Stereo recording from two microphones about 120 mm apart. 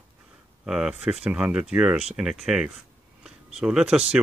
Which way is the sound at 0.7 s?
5° right (ahead or behind).